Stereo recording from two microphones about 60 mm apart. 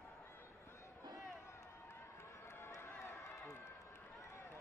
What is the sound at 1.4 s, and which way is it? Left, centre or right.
Run, left.